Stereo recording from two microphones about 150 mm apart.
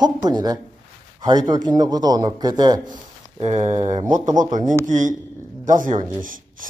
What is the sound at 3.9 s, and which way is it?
Speech, 30° right (ahead or behind).